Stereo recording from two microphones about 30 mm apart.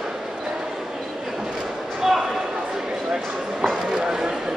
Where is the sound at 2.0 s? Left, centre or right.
Centre.